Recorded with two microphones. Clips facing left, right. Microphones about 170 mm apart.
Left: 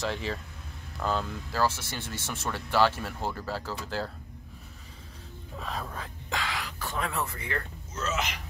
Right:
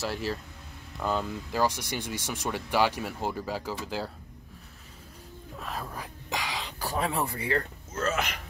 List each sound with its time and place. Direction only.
0.0 s speech: 5° right (ahead or behind)
5.6 s speech: 5° right (ahead or behind)
6.3 s whispering: 20° right (ahead or behind)
6.8 s speech: 35° right (ahead or behind)
7.9 s speech: 55° right (ahead or behind)